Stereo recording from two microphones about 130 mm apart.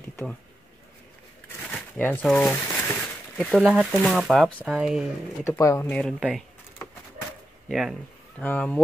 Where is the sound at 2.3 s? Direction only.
5° left (ahead or behind).